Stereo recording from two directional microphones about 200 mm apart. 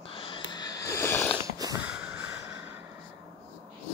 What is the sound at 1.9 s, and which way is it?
Vehicle, 5° right (ahead or behind).